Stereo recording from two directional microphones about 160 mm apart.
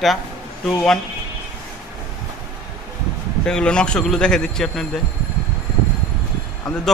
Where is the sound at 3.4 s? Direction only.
5° left (ahead or behind).